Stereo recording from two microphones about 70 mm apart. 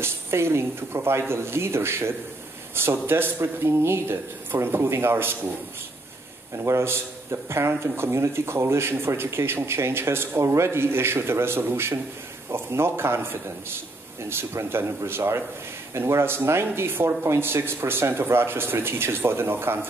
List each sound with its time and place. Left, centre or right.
0.0 s a man's voice: right
6.6 s a man's voice: right